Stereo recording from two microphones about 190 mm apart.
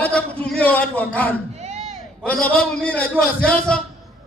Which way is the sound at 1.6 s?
35° right (ahead or behind).